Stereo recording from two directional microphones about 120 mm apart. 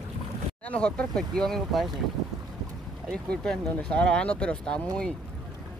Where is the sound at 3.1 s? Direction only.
5° left (ahead or behind).